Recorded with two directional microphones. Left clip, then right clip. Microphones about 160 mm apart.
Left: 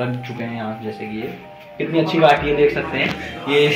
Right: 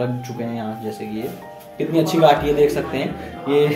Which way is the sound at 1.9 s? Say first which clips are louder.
Even; 20° right (ahead or behind).